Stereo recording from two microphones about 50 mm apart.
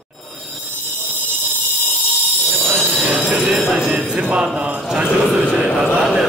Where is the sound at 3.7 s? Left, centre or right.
Centre.